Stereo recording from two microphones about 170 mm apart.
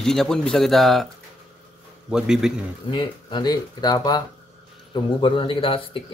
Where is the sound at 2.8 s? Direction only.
25° left (ahead or behind).